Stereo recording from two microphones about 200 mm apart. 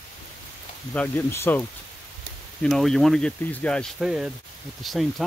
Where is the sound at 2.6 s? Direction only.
Centre (ahead or behind).